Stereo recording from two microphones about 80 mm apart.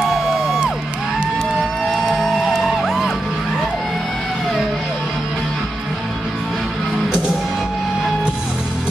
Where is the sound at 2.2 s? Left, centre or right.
Centre.